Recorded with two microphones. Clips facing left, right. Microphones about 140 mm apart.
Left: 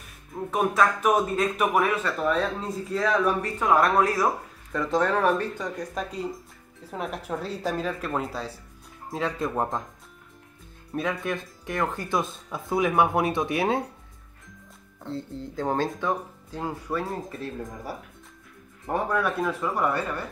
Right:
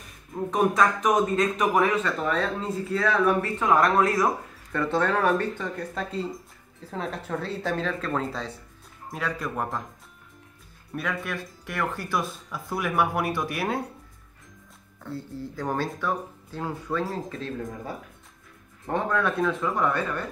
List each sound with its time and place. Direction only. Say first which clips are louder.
0.5 s a man's voice: right 1 dB; 5° left (ahead or behind)
9.1 s speech: left 3 dB; 25° left (ahead or behind)
11.0 s speech: left 3 dB; 20° left (ahead or behind)
15.0 s a man's voice: left 1 dB; 20° left (ahead or behind)